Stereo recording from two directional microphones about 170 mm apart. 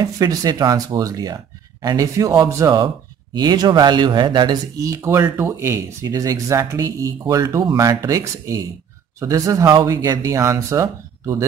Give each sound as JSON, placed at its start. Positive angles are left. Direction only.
{"t": 0.0, "sound": "speech", "side_deg": -20}